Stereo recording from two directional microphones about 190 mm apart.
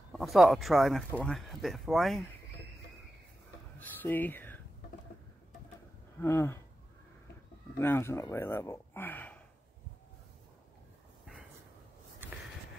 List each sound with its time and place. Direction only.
0.1 s speech: centre (ahead or behind)
4.0 s speech: 10° left (ahead or behind)
6.2 s speech: 15° left (ahead or behind)
7.8 s speech: 10° left (ahead or behind)